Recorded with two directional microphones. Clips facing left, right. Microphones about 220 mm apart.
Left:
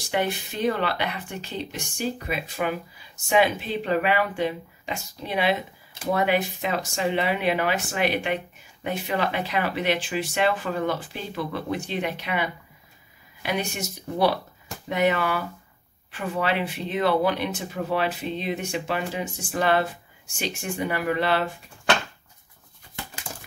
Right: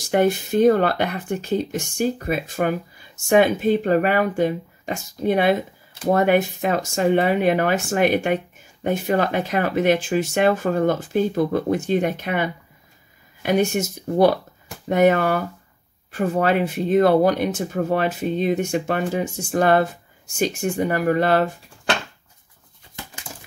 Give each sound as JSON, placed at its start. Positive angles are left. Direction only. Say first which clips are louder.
{"t": 0.0, "sound": "speech", "louder": "right 8 dB", "side_deg": -45}